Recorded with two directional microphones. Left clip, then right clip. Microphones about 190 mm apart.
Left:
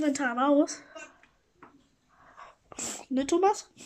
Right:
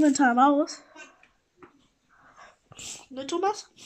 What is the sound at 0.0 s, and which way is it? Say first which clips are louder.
Speech: right 8 dB; 25° right (ahead or behind).